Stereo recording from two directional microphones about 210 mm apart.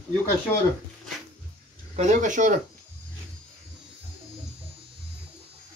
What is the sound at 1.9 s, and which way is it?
Speech, 35° right (ahead or behind).